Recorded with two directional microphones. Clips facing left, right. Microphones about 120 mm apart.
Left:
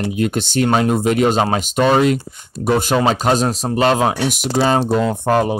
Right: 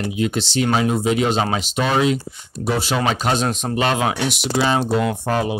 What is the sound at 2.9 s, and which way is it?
Speech, 40° left (ahead or behind).